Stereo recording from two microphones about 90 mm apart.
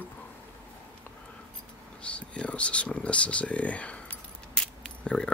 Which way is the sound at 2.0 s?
15° left (ahead or behind).